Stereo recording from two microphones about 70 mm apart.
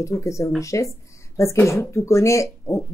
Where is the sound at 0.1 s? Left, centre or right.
Left.